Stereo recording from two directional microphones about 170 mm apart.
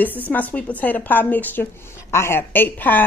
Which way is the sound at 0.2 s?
10° left (ahead or behind).